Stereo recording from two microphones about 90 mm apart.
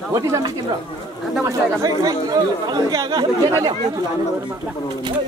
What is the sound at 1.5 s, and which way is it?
Speech, 40° right (ahead or behind).